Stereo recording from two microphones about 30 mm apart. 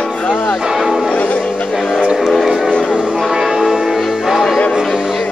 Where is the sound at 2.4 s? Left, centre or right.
Centre.